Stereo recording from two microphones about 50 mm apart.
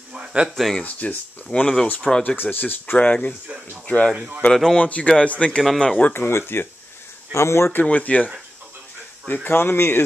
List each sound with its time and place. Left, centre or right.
0.1 s a sound: centre
0.6 s speech: centre
0.8 s speech: left
1.5 s speech: centre
2.2 s speech: left
3.4 s speech: right
3.8 s speech: left
4.7 s speech: left
6.1 s speech: left
7.3 s speech: left
7.8 s speech: left
9.3 s speech: left